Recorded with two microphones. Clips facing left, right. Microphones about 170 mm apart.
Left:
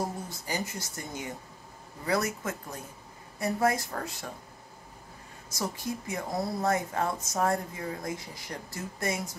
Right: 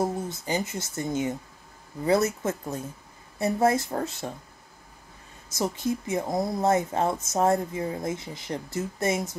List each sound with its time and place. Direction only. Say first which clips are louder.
0.0 s a woman's voice: right 6 dB; 25° right (ahead or behind)
5.5 s a woman's voice: right 6 dB; 20° right (ahead or behind)